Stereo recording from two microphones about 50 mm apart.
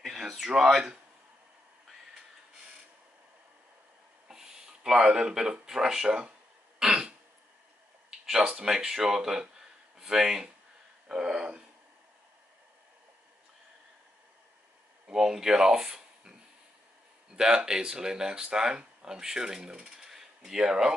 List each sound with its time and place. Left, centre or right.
0.1 s a sound: centre
0.7 s speech: centre
4.3 s speech: centre
6.8 s throat clearing: centre
8.3 s speech: centre
11.1 s a sound: centre
15.0 s speech: centre
17.4 s speech: centre